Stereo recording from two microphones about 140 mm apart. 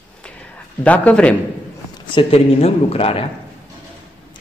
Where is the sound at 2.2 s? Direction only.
45° left (ahead or behind).